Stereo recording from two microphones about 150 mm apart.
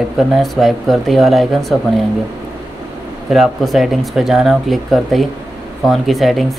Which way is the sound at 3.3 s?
Centre (ahead or behind).